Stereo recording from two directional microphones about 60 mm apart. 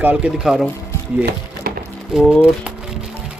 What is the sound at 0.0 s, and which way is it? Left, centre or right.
Speech, right.